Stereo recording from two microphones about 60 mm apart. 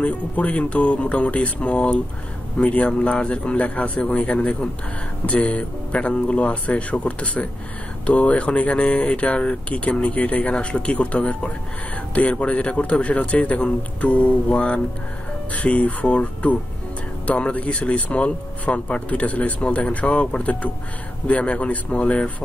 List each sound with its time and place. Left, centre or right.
0.0 s speech: left